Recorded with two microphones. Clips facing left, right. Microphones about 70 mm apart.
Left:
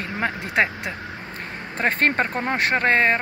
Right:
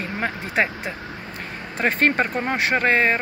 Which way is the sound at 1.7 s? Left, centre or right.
Left.